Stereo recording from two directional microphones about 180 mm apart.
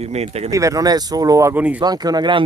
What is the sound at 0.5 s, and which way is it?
Speech, 20° right (ahead or behind).